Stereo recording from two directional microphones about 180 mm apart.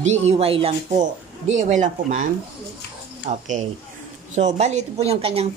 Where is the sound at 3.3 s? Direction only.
40° right (ahead or behind).